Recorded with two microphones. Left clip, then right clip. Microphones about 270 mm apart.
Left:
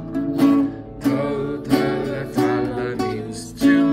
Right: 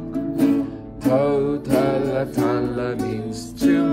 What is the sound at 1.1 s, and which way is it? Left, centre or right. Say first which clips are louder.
Music: right 7 dB; centre.